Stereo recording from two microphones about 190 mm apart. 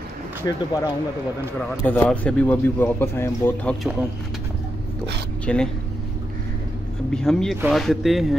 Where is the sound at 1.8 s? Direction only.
10° left (ahead or behind).